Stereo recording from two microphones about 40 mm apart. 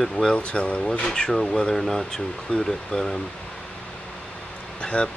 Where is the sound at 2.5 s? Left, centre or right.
Left.